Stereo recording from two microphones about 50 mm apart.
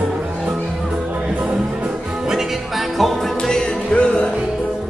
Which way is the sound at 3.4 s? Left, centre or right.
Centre.